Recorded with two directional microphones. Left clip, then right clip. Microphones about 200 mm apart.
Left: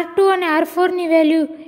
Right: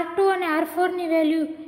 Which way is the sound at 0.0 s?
50° left (ahead or behind).